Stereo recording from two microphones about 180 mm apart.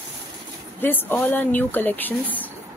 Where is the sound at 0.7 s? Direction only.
10° left (ahead or behind).